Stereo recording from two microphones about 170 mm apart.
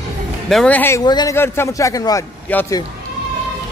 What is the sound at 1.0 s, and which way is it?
Speech, 25° left (ahead or behind).